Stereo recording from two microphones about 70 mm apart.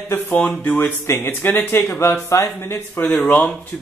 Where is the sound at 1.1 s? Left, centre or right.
Left.